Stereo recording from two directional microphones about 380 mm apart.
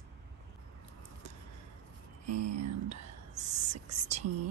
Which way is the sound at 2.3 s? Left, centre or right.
Right.